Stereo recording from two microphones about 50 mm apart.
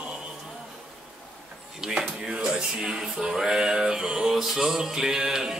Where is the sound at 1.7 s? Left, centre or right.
Centre.